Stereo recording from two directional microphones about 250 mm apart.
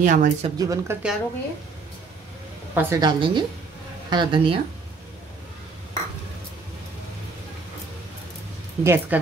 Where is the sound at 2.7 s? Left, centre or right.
Centre.